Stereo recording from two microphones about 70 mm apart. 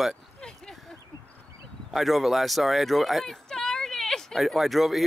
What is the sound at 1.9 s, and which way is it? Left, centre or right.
Speech, centre.